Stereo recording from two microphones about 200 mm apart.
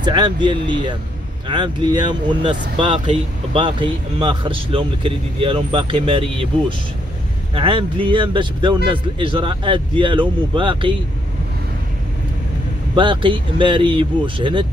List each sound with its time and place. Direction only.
0.0 s speech: 20° right (ahead or behind)
7.5 s speech: 25° right (ahead or behind)
12.9 s speech: 25° right (ahead or behind)